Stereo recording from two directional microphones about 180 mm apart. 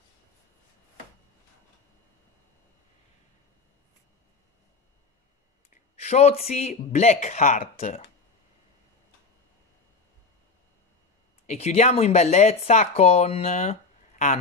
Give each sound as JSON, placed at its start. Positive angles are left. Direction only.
{"t": 5.9, "sound": "speech", "side_deg": 35}
{"t": 11.4, "sound": "speech", "side_deg": 35}